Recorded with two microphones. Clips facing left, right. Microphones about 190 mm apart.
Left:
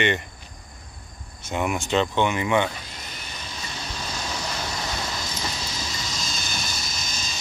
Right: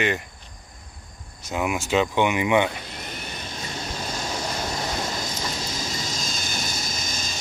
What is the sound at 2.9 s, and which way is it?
Vehicle, 55° right (ahead or behind).